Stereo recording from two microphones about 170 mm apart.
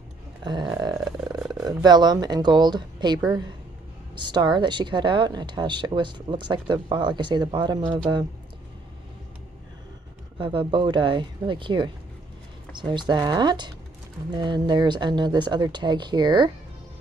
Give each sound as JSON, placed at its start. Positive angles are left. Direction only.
{"t": 0.4, "sound": "a sound", "side_deg": -25}
{"t": 1.5, "sound": "speech", "side_deg": -25}
{"t": 10.4, "sound": "speech", "side_deg": -30}